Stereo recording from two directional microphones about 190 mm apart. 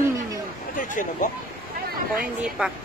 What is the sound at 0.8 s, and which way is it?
Speech, 45° left (ahead or behind).